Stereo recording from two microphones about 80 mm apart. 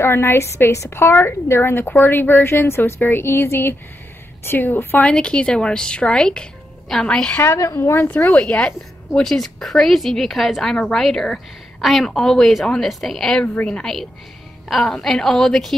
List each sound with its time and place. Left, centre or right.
0.0 s a woman's voice: left
5.1 s speech: centre
7.4 s speech: left
7.9 s speech: left; by 15.7 s centre